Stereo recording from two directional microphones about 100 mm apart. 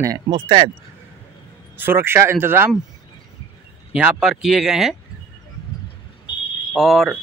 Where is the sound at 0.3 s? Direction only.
70° right (ahead or behind).